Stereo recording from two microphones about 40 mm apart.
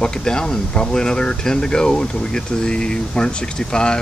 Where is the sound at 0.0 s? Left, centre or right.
Centre.